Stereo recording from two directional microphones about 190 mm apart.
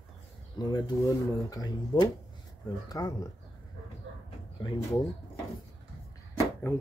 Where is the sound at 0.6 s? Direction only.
20° left (ahead or behind).